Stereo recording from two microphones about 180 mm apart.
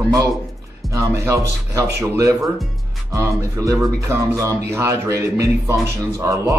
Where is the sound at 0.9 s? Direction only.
15° right (ahead or behind).